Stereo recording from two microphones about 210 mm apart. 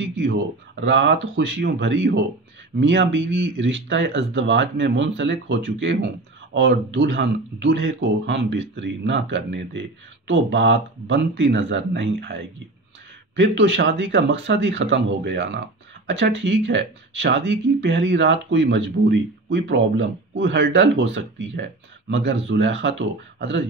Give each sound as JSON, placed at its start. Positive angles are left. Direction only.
{"t": 0.0, "sound": "speech", "side_deg": -55}